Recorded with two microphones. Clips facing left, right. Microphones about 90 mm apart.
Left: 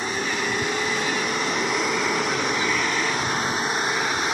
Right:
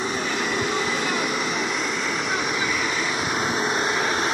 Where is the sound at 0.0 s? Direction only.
20° right (ahead or behind).